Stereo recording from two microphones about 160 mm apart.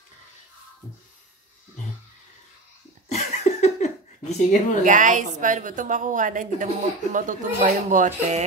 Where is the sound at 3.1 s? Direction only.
45° left (ahead or behind).